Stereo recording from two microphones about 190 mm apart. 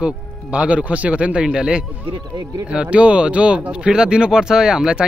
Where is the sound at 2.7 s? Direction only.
5° right (ahead or behind).